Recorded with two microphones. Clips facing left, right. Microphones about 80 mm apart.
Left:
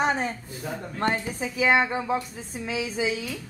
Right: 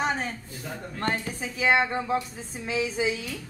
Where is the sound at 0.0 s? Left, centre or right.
Left.